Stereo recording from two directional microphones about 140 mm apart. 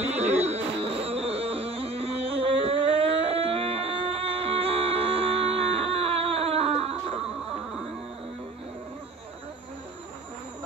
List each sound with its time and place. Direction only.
0.0 s music: 50° right (ahead or behind)